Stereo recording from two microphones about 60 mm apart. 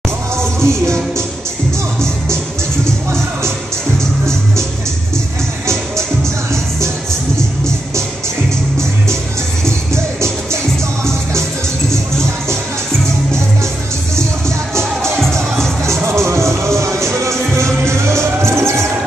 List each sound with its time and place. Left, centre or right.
0.4 s music: right
9.7 s music: right
15.8 s music: right